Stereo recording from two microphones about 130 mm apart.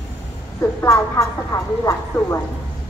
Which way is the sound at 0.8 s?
20° left (ahead or behind).